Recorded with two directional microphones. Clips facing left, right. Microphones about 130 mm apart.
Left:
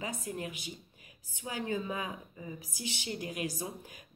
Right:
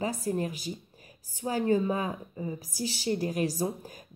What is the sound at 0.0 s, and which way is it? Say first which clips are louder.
Speech: right 8 dB; 40° right (ahead or behind).